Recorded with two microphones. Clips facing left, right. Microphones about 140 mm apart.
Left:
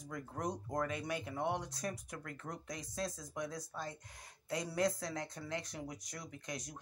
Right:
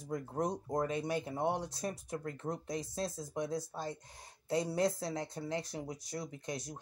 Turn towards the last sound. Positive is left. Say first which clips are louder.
# right 4 dB
turn(degrees=-30)  # may be behind; listen again after turning